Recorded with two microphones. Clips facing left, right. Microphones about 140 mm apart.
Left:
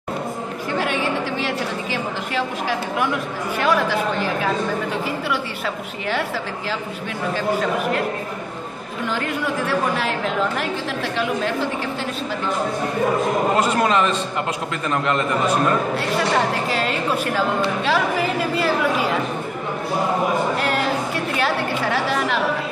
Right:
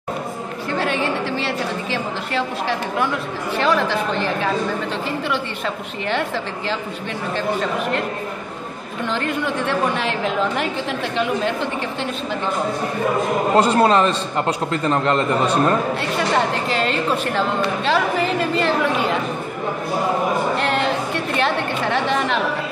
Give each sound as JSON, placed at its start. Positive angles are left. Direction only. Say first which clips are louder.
{"t": 0.7, "sound": "a sound", "louder": "right 1 dB", "side_deg": 15}
{"t": 3.5, "sound": "a woman's voice", "louder": "right 1 dB", "side_deg": 10}
{"t": 9.1, "sound": "a woman's voice", "louder": "right 1 dB", "side_deg": 5}
{"t": 13.6, "sound": "a man's voice", "louder": "right 8 dB", "side_deg": -30}
{"t": 16.0, "sound": "a woman's voice", "louder": "even", "side_deg": 5}
{"t": 20.5, "sound": "a sound", "louder": "right 1 dB", "side_deg": 5}
{"t": 21.4, "sound": "a woman's voice", "louder": "right 1 dB", "side_deg": 5}